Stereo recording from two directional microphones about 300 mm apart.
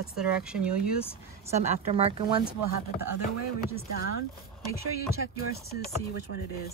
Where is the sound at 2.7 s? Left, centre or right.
Right.